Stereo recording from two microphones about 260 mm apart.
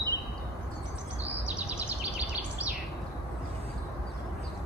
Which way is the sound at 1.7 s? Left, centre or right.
Centre.